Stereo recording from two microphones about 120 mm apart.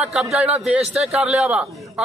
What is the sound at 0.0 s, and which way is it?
A man's voice, 5° right (ahead or behind).